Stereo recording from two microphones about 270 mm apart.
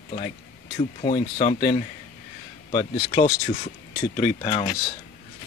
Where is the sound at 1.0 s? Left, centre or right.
Left.